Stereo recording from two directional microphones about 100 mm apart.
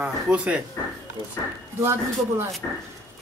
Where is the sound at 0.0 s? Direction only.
10° right (ahead or behind).